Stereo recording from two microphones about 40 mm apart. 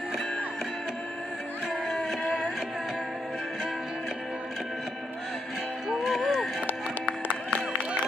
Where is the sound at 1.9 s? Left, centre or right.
Centre.